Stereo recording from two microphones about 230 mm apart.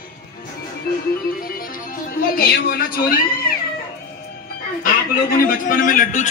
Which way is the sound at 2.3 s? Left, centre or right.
Left.